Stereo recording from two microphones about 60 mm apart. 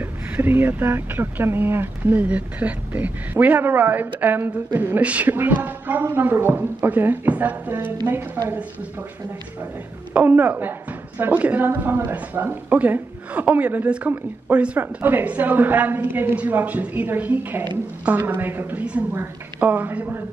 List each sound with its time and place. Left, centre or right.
0.0 s speech: right
2.1 s speech: right
5.0 s a woman's voice: right
10.1 s a woman's voice: right
15.0 s a woman's voice: right